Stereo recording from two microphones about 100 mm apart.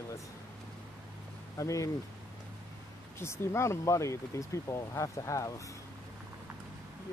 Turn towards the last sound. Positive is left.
turn(degrees=35)  # may be behind; listen again after turning